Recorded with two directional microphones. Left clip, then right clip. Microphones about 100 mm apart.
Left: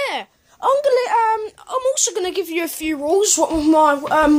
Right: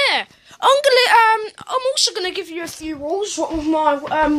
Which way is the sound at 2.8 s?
80° left.